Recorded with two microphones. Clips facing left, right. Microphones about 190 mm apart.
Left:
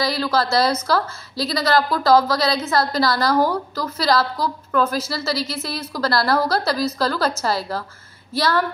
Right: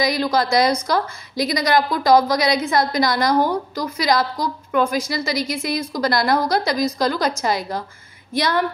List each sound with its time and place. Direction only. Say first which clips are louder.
0.0 s a woman's voice: right 2 dB; 15° right (ahead or behind)